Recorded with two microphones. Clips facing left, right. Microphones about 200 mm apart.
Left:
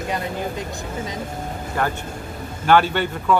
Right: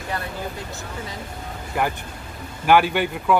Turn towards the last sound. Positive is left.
turn(degrees=-10)  # may be behind; listen again after turning